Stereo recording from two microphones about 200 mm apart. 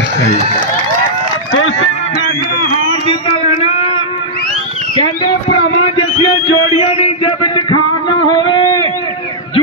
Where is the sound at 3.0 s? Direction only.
25° left (ahead or behind).